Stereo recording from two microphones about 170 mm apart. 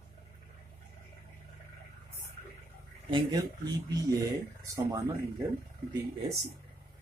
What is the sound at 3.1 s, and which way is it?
Speech, 25° right (ahead or behind).